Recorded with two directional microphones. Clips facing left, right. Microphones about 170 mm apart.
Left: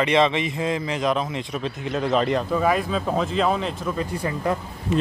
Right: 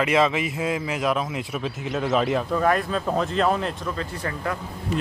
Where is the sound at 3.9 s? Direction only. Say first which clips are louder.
Left 4 dB; 15° left (ahead or behind).